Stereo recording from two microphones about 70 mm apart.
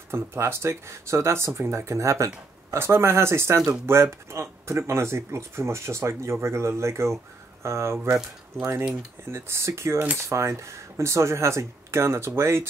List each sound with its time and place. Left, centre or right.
0.1 s speech: right